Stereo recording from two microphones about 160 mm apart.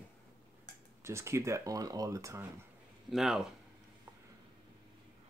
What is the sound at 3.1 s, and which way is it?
Speech, 5° right (ahead or behind).